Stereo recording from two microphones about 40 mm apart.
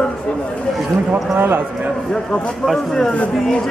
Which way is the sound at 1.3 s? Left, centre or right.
Right.